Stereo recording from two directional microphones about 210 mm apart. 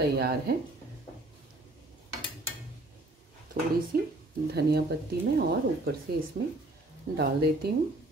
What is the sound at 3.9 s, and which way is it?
Speech, 45° right (ahead or behind).